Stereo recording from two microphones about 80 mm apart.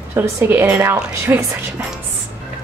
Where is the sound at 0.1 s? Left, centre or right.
Right.